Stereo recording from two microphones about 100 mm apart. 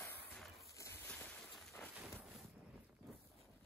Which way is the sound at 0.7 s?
30° left (ahead or behind).